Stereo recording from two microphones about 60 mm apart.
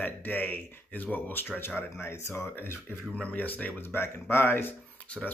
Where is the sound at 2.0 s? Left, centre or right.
Left.